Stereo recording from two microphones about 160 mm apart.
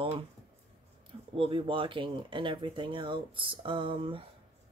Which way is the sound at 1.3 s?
35° right (ahead or behind).